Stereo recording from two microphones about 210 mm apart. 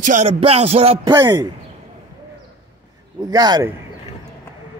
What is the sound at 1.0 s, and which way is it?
Speech, 15° right (ahead or behind).